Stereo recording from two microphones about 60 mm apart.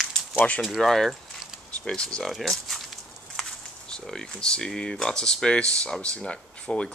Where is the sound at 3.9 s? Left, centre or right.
Centre.